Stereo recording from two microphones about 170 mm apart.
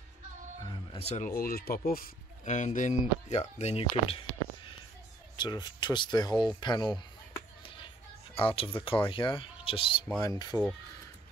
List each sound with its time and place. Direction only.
0.7 s speech: 35° left (ahead or behind); by 2.0 s 60° left (ahead or behind)
2.4 s speech: 45° left (ahead or behind); by 7.0 s 25° left (ahead or behind)
7.6 s music: 30° left (ahead or behind)
8.4 s speech: 30° left (ahead or behind)